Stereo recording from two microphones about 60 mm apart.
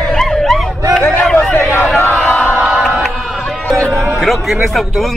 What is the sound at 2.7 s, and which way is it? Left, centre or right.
Chant, centre.